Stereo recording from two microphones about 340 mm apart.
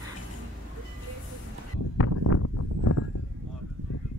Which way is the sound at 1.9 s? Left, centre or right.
Left.